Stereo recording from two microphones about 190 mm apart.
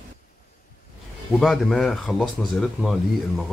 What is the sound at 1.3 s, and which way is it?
Speech, centre (ahead or behind).